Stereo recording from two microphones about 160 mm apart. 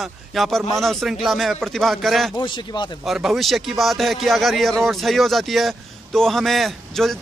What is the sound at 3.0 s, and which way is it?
A man's voice, centre (ahead or behind).